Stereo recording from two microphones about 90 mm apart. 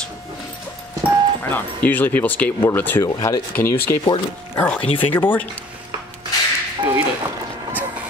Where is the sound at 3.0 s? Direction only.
35° left (ahead or behind).